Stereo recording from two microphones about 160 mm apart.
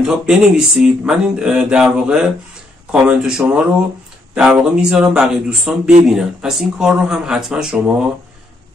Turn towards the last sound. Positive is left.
turn(degrees=-5)  # may be behind; listen again after turning